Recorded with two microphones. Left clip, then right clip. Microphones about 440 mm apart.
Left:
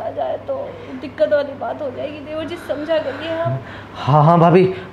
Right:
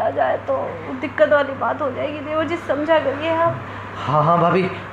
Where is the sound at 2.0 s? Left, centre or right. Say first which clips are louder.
Right 4 dB; centre.